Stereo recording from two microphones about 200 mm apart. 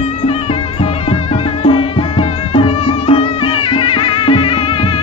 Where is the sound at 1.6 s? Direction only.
30° left (ahead or behind).